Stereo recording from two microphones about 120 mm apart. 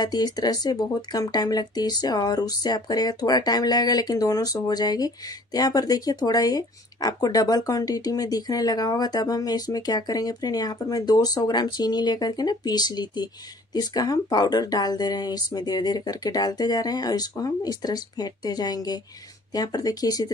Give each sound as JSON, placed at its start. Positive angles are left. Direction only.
{"t": 0.0, "sound": "speech", "side_deg": 35}